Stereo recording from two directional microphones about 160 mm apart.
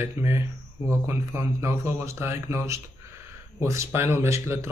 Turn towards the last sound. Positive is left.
turn(degrees=-15)  # may be behind; listen again after turning